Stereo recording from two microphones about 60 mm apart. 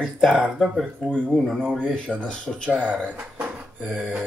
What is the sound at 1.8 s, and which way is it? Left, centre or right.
Speech, centre.